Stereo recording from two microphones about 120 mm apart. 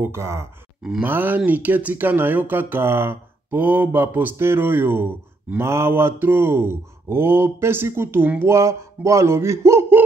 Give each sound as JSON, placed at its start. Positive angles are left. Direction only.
{"t": 0.0, "sound": "speech", "side_deg": -25}